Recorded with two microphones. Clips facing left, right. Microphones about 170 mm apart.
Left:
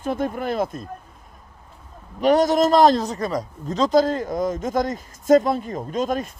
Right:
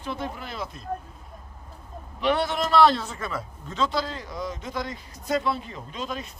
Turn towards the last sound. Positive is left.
turn(degrees=45)  # may be behind; listen again after turning